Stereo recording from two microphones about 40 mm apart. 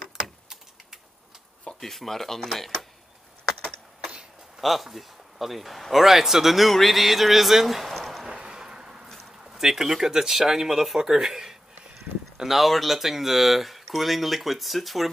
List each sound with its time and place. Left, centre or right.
1.8 s speech: centre
3.4 s computer keyboard: centre
4.6 s speech: centre
8.3 s a sound: centre
9.0 s a sound: centre
9.6 s speech: centre